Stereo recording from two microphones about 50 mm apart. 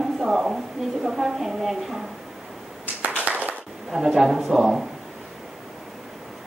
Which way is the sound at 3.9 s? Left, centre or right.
Centre.